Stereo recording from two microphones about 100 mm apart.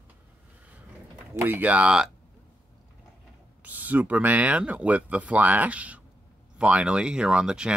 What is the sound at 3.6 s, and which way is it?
Speech, 15° right (ahead or behind).